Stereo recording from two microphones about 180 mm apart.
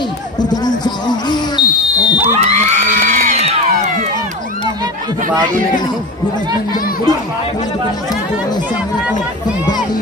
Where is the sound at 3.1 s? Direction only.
40° right (ahead or behind).